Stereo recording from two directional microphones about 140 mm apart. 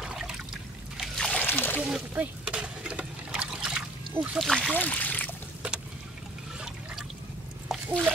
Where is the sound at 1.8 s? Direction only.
5° right (ahead or behind).